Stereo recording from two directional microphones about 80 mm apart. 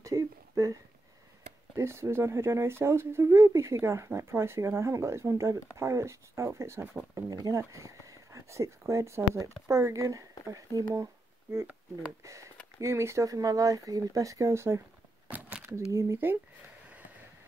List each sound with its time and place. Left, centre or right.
0.0 s a sound: right
1.8 s speech: right
7.4 s speech: right
12.2 s speech: right
15.2 s a sound: right
15.9 s speech: right